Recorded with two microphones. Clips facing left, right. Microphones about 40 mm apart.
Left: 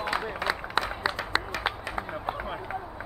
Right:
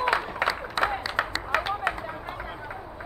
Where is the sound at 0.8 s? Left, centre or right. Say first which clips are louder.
Right 3 dB; left.